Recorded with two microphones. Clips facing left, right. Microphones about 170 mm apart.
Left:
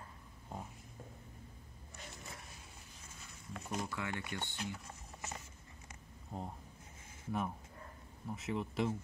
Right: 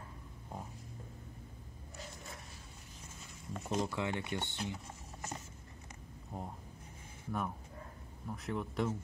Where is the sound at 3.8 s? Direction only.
20° right (ahead or behind).